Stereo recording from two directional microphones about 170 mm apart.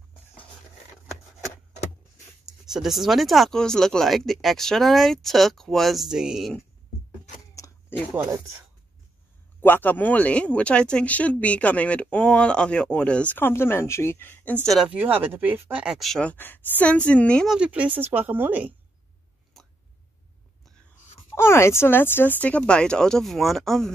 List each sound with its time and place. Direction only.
2.4 s speech: centre (ahead or behind)
7.5 s a sound: 20° left (ahead or behind)
9.6 s speech: 10° left (ahead or behind)
14.9 s speech: 10° right (ahead or behind); by 17.6 s 5° left (ahead or behind)
17.6 s speech: 10° right (ahead or behind)
19.6 s a sound: centre (ahead or behind)
21.4 s speech: 15° left (ahead or behind)